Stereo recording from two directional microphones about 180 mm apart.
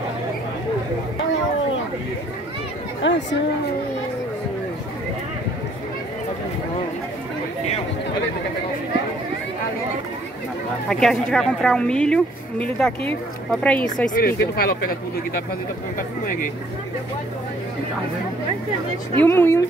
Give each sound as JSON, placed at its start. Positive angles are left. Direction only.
{"t": 3.0, "sound": "chatter", "side_deg": 90}
{"t": 10.9, "sound": "speech", "side_deg": 5}
{"t": 14.1, "sound": "speech", "side_deg": 55}
{"t": 19.1, "sound": "speech", "side_deg": 10}